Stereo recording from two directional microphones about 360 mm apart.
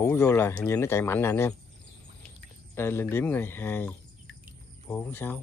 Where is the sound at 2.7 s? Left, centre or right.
Centre.